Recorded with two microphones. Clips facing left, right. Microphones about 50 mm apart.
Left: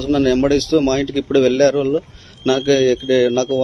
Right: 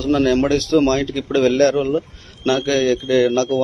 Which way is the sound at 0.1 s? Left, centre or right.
Centre.